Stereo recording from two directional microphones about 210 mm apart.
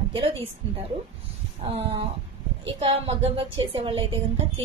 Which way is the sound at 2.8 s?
25° right (ahead or behind).